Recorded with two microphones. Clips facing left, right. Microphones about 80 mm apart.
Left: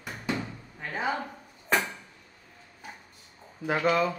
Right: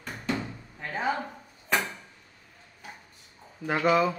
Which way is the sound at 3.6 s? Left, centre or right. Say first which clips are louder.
Right 2 dB; centre.